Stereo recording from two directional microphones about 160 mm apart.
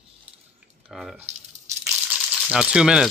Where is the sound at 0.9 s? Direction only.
Centre (ahead or behind).